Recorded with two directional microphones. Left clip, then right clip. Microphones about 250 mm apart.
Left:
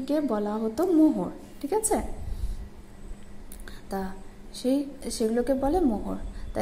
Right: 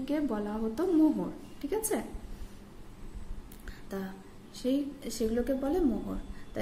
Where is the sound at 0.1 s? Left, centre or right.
Centre.